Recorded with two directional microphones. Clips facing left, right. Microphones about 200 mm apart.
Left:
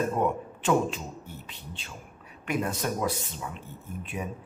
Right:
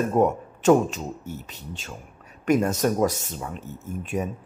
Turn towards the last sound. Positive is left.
turn(degrees=-45)  # may be behind; listen again after turning